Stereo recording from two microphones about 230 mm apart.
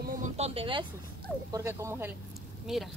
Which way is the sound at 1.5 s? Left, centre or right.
Centre.